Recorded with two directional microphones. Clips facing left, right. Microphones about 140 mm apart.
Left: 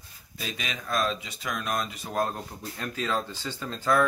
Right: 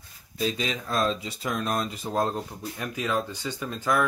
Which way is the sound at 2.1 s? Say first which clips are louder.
Right 2 dB; 20° right (ahead or behind).